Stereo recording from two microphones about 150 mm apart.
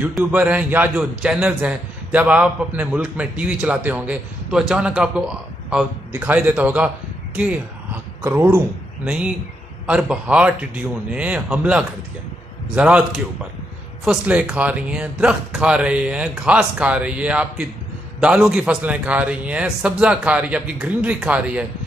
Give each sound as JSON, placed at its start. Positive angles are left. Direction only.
{"t": 0.2, "sound": "a man's voice", "side_deg": -10}